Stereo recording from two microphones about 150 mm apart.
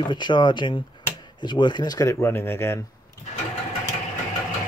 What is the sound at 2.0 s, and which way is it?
Speech, 15° left (ahead or behind).